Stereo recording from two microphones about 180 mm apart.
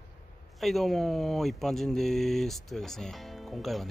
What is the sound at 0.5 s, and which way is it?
Speech, centre (ahead or behind).